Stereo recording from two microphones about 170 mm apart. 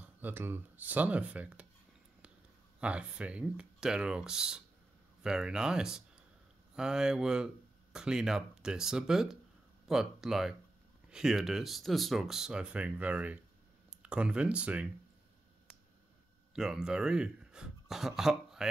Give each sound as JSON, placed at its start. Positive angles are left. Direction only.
{"t": 0.2, "sound": "speech", "side_deg": -10}
{"t": 2.8, "sound": "speech", "side_deg": -5}
{"t": 16.5, "sound": "a man's voice", "side_deg": -5}